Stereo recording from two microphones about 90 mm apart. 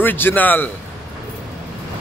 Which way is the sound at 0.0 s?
20° left (ahead or behind).